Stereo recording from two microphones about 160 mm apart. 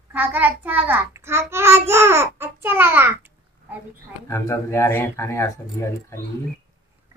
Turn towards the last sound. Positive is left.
turn(degrees=15)  # may be behind; listen again after turning